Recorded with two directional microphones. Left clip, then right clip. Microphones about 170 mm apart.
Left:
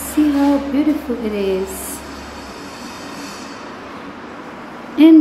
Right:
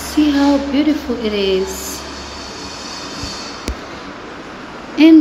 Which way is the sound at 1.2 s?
Centre (ahead or behind).